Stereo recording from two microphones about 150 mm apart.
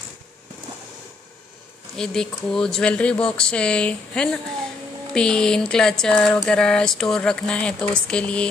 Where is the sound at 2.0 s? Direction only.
5° left (ahead or behind).